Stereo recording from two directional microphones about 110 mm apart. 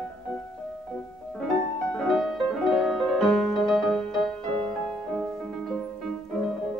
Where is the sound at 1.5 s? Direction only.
5° left (ahead or behind).